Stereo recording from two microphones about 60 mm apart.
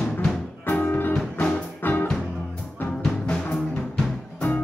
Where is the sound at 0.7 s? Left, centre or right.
Left.